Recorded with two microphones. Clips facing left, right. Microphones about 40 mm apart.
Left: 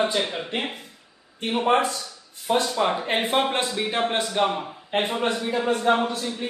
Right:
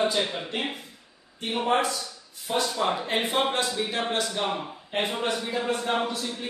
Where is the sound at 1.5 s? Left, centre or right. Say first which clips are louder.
Left 3 dB; left.